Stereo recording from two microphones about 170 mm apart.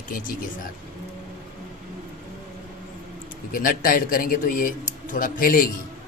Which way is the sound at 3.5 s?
55° left (ahead or behind).